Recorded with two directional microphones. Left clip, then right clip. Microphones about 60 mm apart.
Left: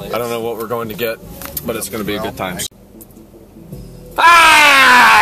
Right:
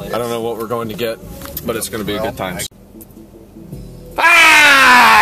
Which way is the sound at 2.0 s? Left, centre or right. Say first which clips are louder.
Right 1 dB; centre.